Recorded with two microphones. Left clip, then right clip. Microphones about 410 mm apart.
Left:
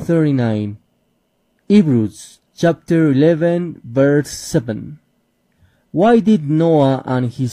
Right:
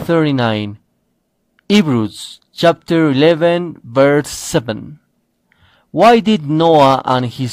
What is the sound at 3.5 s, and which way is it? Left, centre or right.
Speech, right.